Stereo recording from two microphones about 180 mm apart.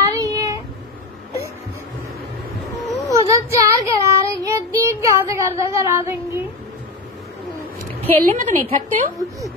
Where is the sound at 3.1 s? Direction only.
15° right (ahead or behind).